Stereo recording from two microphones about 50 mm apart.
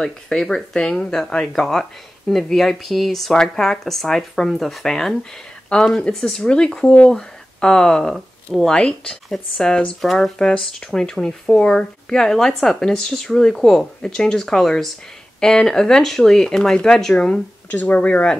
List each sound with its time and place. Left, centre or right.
0.3 s speech: centre
17.6 s speech: left